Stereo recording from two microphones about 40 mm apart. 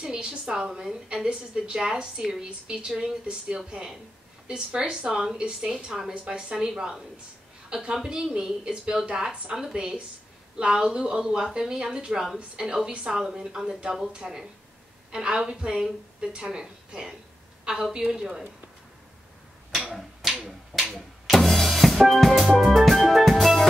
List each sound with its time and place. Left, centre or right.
0.0 s a woman's voice: right
3.3 s a woman's voice: right
20.4 s drum: centre
21.9 s music: centre